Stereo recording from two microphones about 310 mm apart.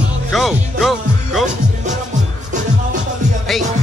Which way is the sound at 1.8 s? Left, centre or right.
Right.